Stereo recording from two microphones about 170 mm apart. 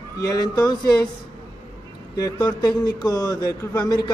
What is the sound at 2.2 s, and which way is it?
A man's voice, 25° left (ahead or behind).